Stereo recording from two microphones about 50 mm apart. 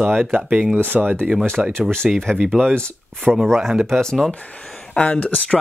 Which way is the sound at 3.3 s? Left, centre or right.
Centre.